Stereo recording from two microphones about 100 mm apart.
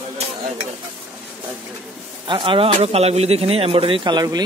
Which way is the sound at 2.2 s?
55° right (ahead or behind).